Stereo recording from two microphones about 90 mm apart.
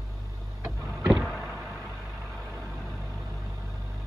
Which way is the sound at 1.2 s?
5° right (ahead or behind).